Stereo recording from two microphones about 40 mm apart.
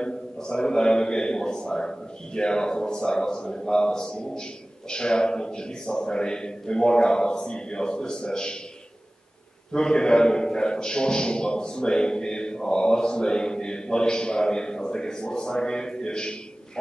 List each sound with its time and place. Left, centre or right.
0.0 s a man's voice: centre
9.7 s a man's voice: centre